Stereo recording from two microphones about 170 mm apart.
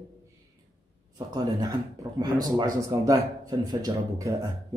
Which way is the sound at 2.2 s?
25° right (ahead or behind).